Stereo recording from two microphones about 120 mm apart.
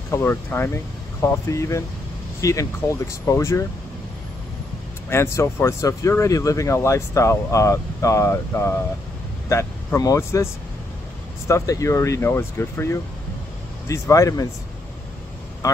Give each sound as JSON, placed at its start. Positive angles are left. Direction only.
{"t": 0.1, "sound": "speech", "side_deg": 20}
{"t": 5.1, "sound": "speech", "side_deg": 20}
{"t": 15.6, "sound": "vehicle", "side_deg": 25}